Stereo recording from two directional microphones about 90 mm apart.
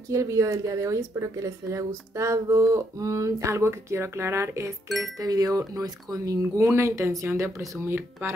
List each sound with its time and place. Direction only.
0.1 s speech: 35° right (ahead or behind)
4.8 s speech: centre (ahead or behind)
5.2 s speech: 45° right (ahead or behind); by 8.4 s 25° right (ahead or behind)